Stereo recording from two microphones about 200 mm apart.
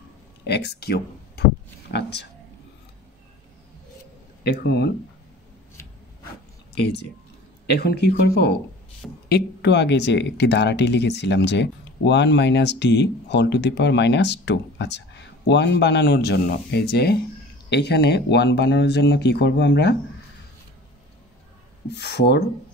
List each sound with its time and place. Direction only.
0.5 s speech: 55° left (ahead or behind)
4.4 s speech: 55° left (ahead or behind)
7.6 s speech: 55° left (ahead or behind)
21.9 s speech: 55° left (ahead or behind)